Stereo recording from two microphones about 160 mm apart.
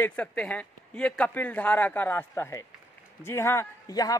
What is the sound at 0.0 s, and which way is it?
Speech, 10° left (ahead or behind).